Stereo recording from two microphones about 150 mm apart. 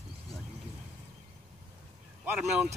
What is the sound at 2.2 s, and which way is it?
Speech, 10° right (ahead or behind).